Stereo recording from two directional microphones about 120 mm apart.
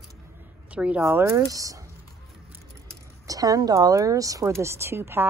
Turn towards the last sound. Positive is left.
turn(degrees=-20)  # may be behind; listen again after turning